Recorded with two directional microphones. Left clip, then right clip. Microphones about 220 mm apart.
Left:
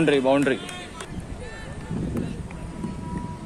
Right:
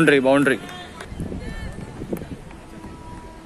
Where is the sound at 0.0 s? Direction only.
20° right (ahead or behind).